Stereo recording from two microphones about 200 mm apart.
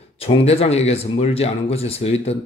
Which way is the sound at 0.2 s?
30° left (ahead or behind).